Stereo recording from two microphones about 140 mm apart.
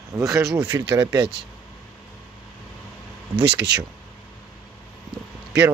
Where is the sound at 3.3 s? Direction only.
10° right (ahead or behind).